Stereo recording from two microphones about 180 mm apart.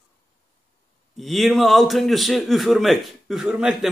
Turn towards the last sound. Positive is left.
turn(degrees=-5)  # may be behind; listen again after turning